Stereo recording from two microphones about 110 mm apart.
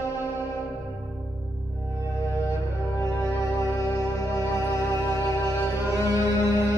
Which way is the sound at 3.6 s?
25° left (ahead or behind).